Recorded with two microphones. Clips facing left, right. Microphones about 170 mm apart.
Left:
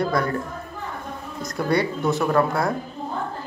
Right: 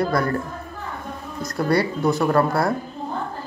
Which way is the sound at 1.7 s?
Centre (ahead or behind).